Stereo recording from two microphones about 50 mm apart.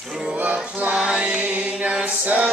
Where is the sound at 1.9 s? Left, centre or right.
Right.